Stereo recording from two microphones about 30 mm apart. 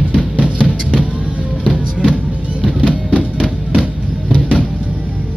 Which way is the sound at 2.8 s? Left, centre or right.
Right.